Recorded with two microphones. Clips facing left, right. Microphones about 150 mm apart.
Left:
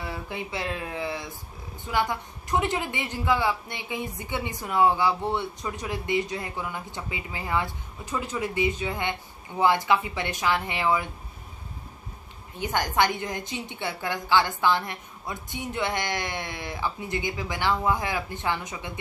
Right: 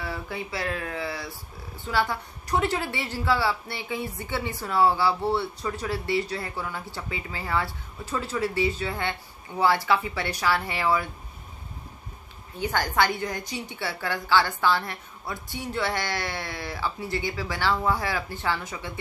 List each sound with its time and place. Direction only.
0.0 s a woman's voice: 20° left (ahead or behind)
12.5 s a woman's voice: 15° left (ahead or behind)